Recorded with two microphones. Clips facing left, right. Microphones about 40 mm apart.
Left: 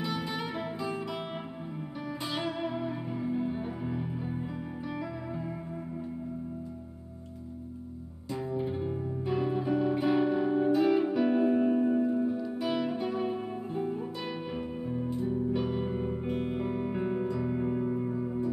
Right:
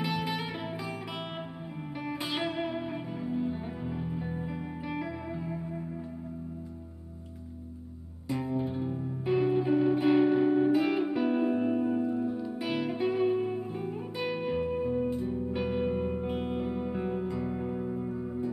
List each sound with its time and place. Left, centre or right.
0.0 s music: centre
2.3 s music: centre
3.1 s music: centre
8.3 s music: right; by 12.4 s centre
12.5 s music: right
16.5 s music: centre